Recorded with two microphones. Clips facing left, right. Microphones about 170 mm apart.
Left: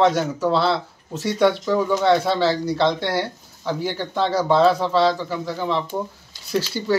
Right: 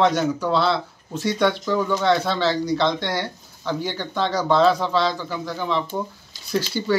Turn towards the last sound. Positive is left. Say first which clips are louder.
# even
turn(degrees=5)  # may be behind; listen again after turning